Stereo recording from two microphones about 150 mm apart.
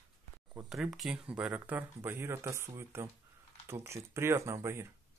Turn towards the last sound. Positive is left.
turn(degrees=-15)  # may be behind; listen again after turning